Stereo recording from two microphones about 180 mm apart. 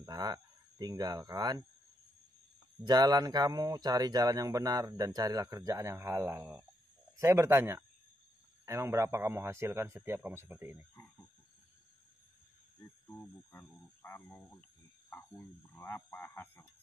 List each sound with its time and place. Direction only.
0.0 s speech: 20° right (ahead or behind)
2.8 s a man's voice: 20° right (ahead or behind)
13.0 s speech: 15° left (ahead or behind)
15.0 s frog: 15° left (ahead or behind)
15.8 s speech: 10° left (ahead or behind)